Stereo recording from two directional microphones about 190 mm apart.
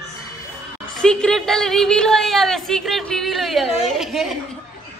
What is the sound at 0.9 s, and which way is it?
A woman's voice, 5° left (ahead or behind).